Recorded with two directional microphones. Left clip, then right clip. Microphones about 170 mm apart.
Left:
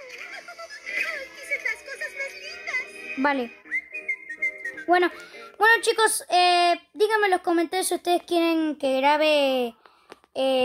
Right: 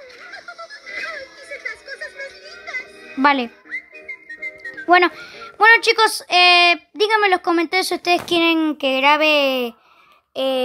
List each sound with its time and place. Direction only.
0.6 s a sound: 25° left (ahead or behind)
1.5 s music: 25° left (ahead or behind)
3.2 s speech: 15° right (ahead or behind)
3.7 s whistling: 25° left (ahead or behind)
4.8 s a woman's voice: 15° right (ahead or behind)